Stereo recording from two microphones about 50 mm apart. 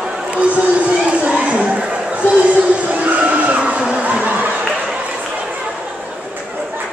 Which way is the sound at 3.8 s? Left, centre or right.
Centre.